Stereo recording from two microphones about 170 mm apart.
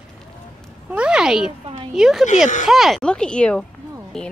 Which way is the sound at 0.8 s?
5° right (ahead or behind).